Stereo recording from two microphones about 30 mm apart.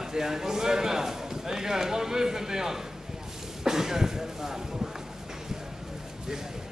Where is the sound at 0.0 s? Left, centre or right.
Centre.